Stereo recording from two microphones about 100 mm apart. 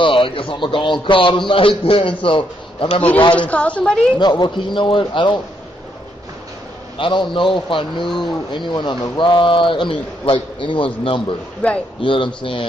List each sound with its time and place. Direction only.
0.0 s a man's voice: 60° left (ahead or behind)
3.3 s a woman's voice: 15° left (ahead or behind)
4.2 s speech: 50° left (ahead or behind)
7.0 s a man's voice: 55° left (ahead or behind)
8.1 s speech: centre (ahead or behind)
8.5 s a man's voice: 50° left (ahead or behind)